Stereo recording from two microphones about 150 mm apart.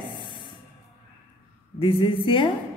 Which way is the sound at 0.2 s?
30° left (ahead or behind).